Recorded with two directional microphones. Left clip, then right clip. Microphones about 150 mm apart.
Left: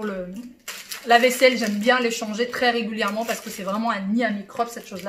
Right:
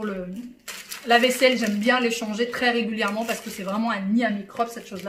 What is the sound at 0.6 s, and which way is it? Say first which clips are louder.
Speech: left 2 dB; centre (ahead or behind).